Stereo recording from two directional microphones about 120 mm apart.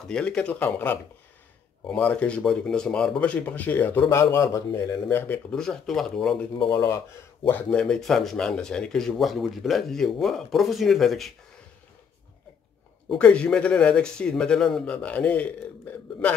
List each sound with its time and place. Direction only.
0.1 s speech: 5° left (ahead or behind); by 4.9 s 25° left (ahead or behind)
5.1 s speech: 15° left (ahead or behind)
5.5 s speech: 5° left (ahead or behind)
6.6 s speech: 35° left (ahead or behind)
7.4 s speech: 10° left (ahead or behind)
13.1 s speech: 10° left (ahead or behind)